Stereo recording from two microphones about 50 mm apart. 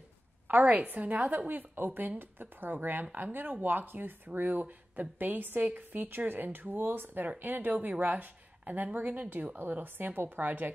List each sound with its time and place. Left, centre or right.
0.5 s speech: right
9.6 s speech: right